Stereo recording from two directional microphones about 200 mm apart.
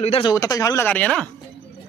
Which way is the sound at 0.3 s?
15° left (ahead or behind).